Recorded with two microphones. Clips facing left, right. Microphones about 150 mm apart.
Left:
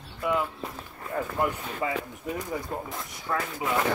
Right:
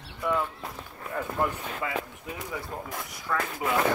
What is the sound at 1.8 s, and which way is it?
Speech, 25° left (ahead or behind).